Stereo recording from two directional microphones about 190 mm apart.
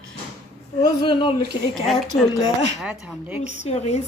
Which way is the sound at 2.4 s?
70° right (ahead or behind).